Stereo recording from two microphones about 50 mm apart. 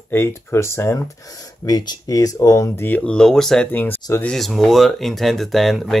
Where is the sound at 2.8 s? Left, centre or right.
Left.